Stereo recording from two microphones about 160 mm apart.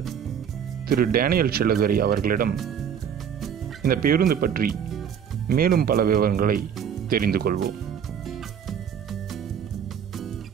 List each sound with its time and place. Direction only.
0.8 s speech: 65° right (ahead or behind)
3.8 s speech: 65° right (ahead or behind)